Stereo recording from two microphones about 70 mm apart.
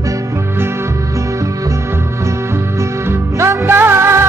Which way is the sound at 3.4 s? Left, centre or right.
Right.